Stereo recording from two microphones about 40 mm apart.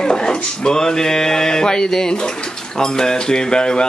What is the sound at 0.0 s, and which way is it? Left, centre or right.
Speech, centre.